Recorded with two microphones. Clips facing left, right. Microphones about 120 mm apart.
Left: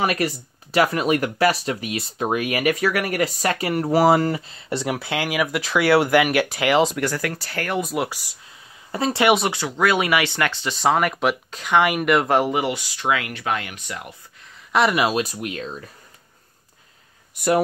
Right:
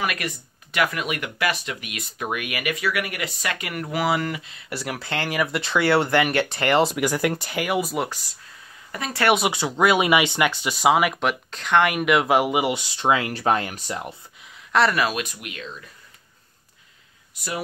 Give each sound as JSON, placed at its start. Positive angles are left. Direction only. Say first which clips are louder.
{"t": 0.0, "sound": "speech", "louder": "left 6 dB", "side_deg": 35}
{"t": 4.9, "sound": "speech", "louder": "right 1 dB", "side_deg": 10}
{"t": 7.1, "sound": "speech", "louder": "right 3 dB", "side_deg": -20}
{"t": 8.9, "sound": "speech", "louder": "left 8 dB", "side_deg": 30}
{"t": 9.5, "sound": "speech", "louder": "right 1 dB", "side_deg": -20}
{"t": 12.7, "sound": "speech", "louder": "right 2 dB", "side_deg": -25}
{"t": 14.7, "sound": "speech", "louder": "left 1 dB", "side_deg": 10}
{"t": 15.0, "sound": "speech", "louder": "left 5 dB", "side_deg": 30}